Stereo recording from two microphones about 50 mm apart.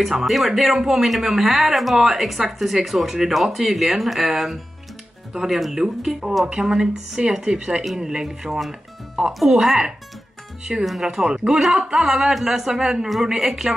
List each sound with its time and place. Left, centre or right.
0.1 s a man's voice: centre
7.8 s a man's voice: centre